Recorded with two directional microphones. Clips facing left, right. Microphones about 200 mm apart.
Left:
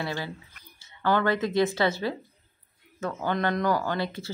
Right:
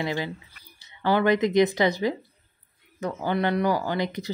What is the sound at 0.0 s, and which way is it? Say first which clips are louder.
A woman's voice: right 4 dB; 15° right (ahead or behind).